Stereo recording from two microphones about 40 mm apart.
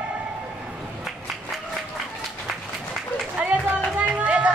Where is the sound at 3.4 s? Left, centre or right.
Right.